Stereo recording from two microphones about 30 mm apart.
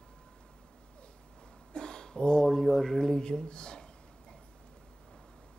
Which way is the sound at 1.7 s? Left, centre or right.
Left.